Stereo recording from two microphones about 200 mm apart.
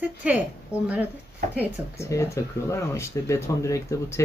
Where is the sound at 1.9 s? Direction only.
15° left (ahead or behind).